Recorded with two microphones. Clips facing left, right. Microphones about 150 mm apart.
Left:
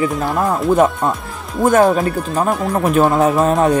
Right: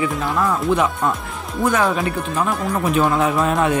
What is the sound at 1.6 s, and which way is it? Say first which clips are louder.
Speech: left 6 dB; 45° left (ahead or behind).